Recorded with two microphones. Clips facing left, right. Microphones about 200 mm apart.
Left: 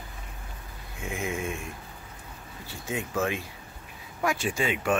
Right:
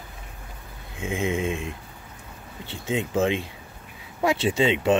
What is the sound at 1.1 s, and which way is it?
Speech, 25° right (ahead or behind).